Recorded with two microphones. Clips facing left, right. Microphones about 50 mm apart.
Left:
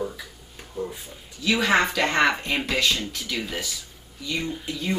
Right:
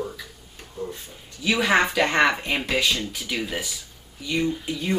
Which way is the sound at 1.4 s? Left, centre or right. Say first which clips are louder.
Right 1 dB; centre.